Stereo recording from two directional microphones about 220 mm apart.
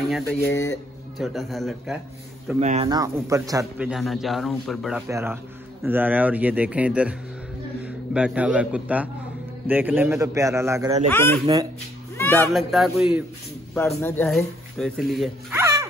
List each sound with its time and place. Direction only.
0.4 s speech: 15° left (ahead or behind)
1.1 s speech: centre (ahead or behind)
2.6 s speech: 30° right (ahead or behind)
2.9 s speech: 15° right (ahead or behind)
3.7 s a man's voice: 5° right (ahead or behind)
11.1 s speech: 10° left (ahead or behind)
15.5 s a sound: 10° right (ahead or behind)